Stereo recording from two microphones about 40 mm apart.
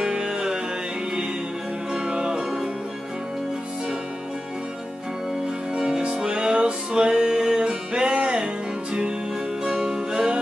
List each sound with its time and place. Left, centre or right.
0.0 s music: centre
1.9 s music: centre
5.8 s music: centre
9.6 s music: centre